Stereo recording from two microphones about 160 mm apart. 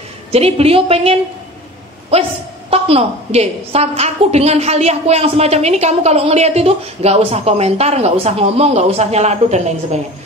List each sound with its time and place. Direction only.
0.3 s a woman's voice: 40° right (ahead or behind)
2.7 s a woman's voice: 40° right (ahead or behind)